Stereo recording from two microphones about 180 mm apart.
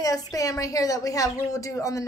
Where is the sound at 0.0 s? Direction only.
20° left (ahead or behind).